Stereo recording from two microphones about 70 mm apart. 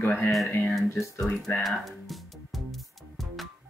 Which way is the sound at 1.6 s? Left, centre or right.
Centre.